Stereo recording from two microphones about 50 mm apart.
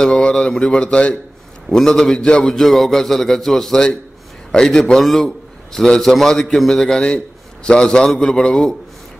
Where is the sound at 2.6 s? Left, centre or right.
Centre.